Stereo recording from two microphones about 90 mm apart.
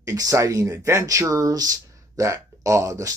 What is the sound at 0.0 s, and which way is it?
Speech, 40° right (ahead or behind).